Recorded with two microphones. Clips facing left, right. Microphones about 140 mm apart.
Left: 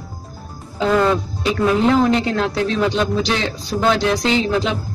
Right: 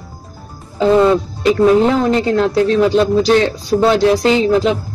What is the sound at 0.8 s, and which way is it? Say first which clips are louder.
Speech: right 5 dB; 30° right (ahead or behind).